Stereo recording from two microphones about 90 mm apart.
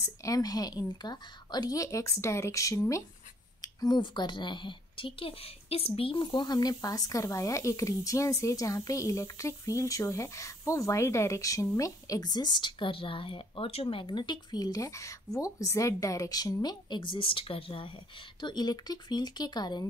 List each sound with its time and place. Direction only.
0.0 s a woman's voice: 40° left (ahead or behind)
3.6 s a sound: 45° left (ahead or behind)
4.0 s a woman's voice: 60° left (ahead or behind)
16.6 s a woman's voice: 60° left (ahead or behind); by 17.9 s 80° left
18.4 s speech: 55° left (ahead or behind)